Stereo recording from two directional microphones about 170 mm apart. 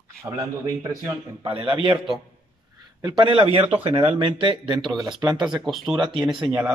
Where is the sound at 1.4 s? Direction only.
35° right (ahead or behind).